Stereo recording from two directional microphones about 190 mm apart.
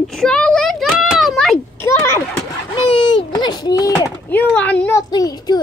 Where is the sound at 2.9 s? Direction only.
25° left (ahead or behind).